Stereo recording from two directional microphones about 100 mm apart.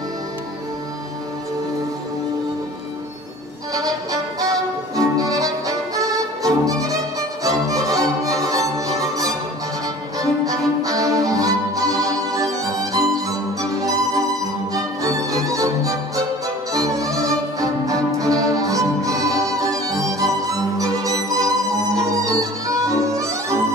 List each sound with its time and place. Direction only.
3.7 s music: 35° right (ahead or behind)
16.7 s violin: 35° right (ahead or behind)
21.9 s music: 35° right (ahead or behind)